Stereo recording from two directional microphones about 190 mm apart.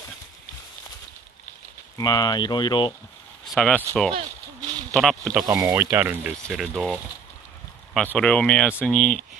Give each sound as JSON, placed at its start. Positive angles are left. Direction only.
{"t": 2.0, "sound": "speech", "side_deg": 20}
{"t": 3.5, "sound": "speech", "side_deg": 5}
{"t": 5.5, "sound": "speech", "side_deg": -15}
{"t": 6.5, "sound": "speech", "side_deg": 0}